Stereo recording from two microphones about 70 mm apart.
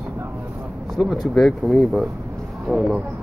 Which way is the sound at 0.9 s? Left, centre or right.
Centre.